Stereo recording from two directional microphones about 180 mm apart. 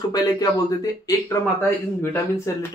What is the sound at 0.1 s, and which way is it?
Speech, 20° left (ahead or behind).